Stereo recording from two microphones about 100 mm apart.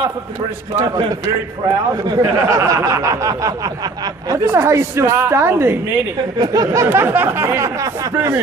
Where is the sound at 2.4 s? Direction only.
35° right (ahead or behind).